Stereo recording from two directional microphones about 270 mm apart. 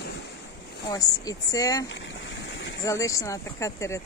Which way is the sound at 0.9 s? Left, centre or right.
Centre.